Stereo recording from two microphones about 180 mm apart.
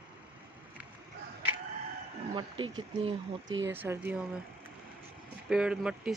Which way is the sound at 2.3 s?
30° right (ahead or behind).